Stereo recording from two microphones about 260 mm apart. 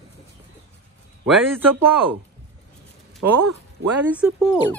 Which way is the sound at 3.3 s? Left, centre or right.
Right.